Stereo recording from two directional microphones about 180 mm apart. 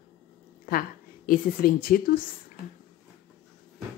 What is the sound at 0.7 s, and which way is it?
A woman's voice, 55° left (ahead or behind).